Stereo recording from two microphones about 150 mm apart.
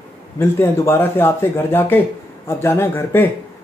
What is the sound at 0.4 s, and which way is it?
Speech, 15° left (ahead or behind).